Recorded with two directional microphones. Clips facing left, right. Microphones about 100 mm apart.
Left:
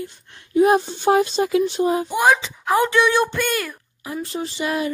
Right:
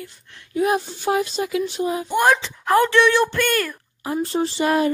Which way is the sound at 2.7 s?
15° left (ahead or behind).